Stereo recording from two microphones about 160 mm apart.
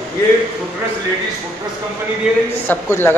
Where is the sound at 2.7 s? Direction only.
15° left (ahead or behind).